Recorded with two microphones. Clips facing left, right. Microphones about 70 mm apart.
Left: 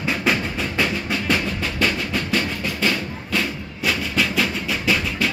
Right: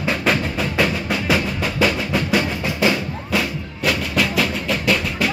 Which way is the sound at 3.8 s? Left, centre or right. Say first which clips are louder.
Right 2 dB; centre.